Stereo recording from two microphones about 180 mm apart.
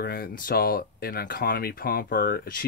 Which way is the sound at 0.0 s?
60° left (ahead or behind).